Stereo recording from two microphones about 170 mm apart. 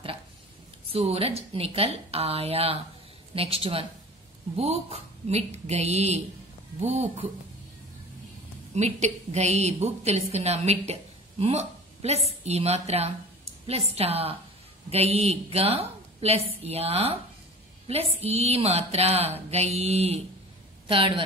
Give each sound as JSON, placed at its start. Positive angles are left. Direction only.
{"t": 0.8, "sound": "a woman's voice", "side_deg": -35}
{"t": 8.7, "sound": "a woman's voice", "side_deg": -40}